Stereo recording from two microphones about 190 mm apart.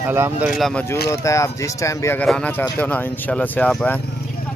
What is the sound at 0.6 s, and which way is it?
Speech, centre (ahead or behind).